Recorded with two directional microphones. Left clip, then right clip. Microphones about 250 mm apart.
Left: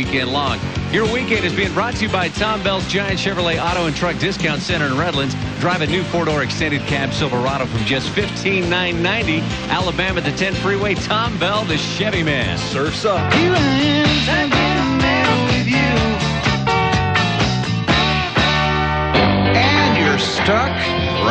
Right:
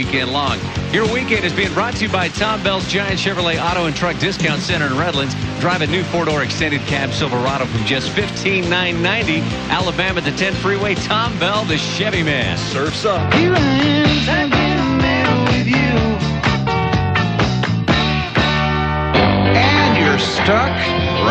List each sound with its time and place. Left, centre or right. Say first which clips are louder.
0.9 s speech: right 1 dB; centre
5.7 s speech: right 1 dB; centre
11.1 s speech: right 1 dB; centre
13.0 s music: even; centre